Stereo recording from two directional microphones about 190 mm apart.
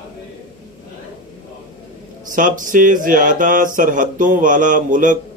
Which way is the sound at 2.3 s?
45° right (ahead or behind).